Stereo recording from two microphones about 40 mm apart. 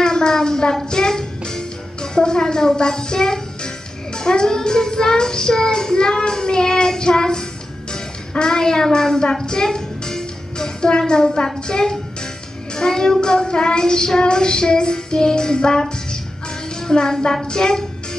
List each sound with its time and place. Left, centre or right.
0.0 s a sound: centre
0.8 s a child's voice: centre
12.7 s child singing: centre
16.9 s speech: centre